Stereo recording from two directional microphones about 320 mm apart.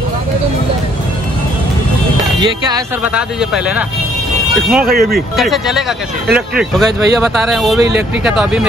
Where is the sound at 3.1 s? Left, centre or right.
Centre.